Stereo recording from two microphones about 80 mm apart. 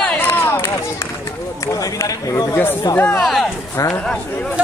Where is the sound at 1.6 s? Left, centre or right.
Left.